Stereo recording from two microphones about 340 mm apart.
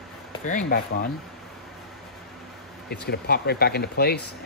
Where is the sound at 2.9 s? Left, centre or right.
Left.